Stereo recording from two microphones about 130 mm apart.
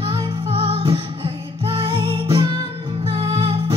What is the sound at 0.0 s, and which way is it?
Music, 40° right (ahead or behind).